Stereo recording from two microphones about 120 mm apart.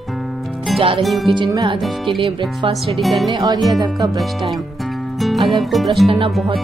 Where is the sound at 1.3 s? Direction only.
40° right (ahead or behind).